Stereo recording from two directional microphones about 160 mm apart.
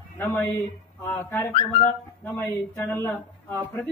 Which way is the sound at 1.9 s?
10° left (ahead or behind).